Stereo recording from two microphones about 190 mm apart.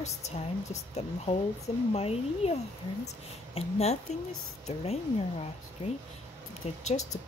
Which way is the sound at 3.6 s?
35° left (ahead or behind).